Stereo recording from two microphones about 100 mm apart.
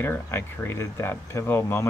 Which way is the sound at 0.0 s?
20° left (ahead or behind).